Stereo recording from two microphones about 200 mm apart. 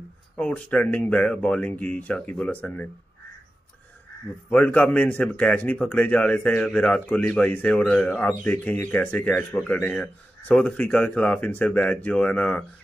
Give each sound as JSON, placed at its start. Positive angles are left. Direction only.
{"t": 0.4, "sound": "speech", "side_deg": 10}
{"t": 4.5, "sound": "speech", "side_deg": 5}